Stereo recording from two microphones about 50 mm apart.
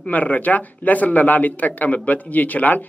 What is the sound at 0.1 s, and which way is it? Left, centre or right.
Speech, left.